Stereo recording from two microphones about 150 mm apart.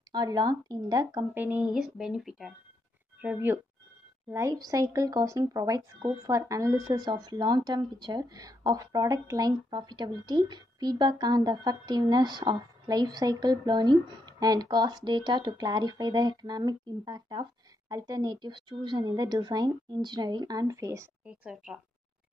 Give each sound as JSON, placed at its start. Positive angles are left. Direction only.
{"t": 0.1, "sound": "speech", "side_deg": -30}
{"t": 1.4, "sound": "speech", "side_deg": -10}
{"t": 3.2, "sound": "speech", "side_deg": -15}
{"t": 21.3, "sound": "speech", "side_deg": -5}